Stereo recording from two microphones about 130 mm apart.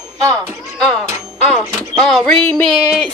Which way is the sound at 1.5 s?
Centre (ahead or behind).